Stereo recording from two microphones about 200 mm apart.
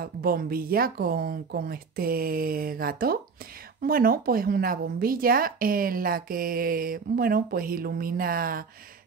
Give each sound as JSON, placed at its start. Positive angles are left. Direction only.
{"t": 0.0, "sound": "speech", "side_deg": -45}